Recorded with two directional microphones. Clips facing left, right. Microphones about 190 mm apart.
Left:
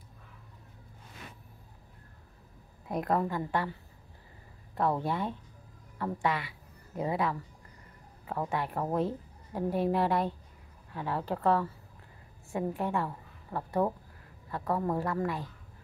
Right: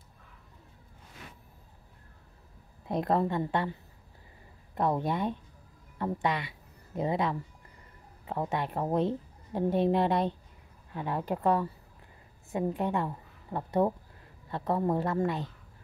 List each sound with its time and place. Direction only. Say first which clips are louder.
2.9 s a woman's voice: right 2 dB; 25° right (ahead or behind)
4.7 s a woman's voice: right 1 dB; 20° right (ahead or behind)